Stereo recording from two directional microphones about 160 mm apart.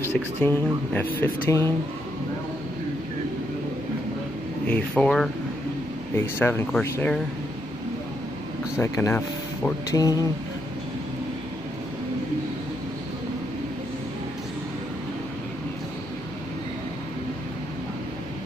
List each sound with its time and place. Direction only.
0.4 s speech: 15° left (ahead or behind)
4.6 s speech: 10° left (ahead or behind)
6.1 s speech: 15° left (ahead or behind)
8.7 s speech: 15° left (ahead or behind)